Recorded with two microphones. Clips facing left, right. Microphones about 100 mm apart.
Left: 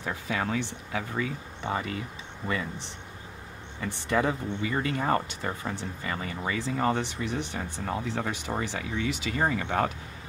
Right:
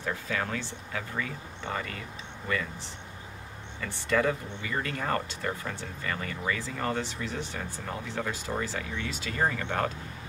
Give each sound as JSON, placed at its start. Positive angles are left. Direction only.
{"t": 0.0, "sound": "speech", "side_deg": 15}